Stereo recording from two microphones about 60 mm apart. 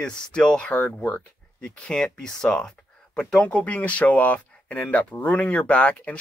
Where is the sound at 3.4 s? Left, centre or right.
Left.